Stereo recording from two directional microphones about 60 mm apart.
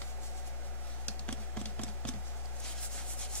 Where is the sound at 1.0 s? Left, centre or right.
Left.